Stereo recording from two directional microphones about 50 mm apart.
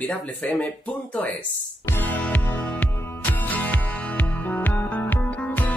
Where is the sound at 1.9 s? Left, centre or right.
Left.